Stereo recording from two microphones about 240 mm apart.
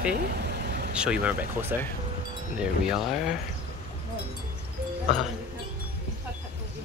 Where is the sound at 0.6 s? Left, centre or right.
Right.